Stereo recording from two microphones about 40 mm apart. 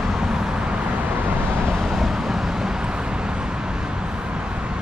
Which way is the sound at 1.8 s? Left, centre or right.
Centre.